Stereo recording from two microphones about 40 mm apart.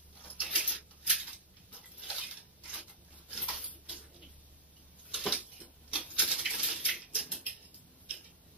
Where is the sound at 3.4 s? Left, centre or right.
Right.